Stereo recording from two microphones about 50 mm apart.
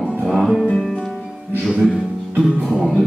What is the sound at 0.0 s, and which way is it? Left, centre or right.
Music, centre.